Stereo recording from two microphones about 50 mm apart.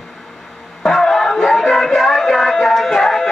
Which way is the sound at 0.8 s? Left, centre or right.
Centre.